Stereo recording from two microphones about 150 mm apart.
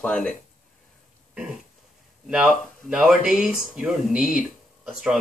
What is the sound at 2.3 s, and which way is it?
Speech, 5° right (ahead or behind).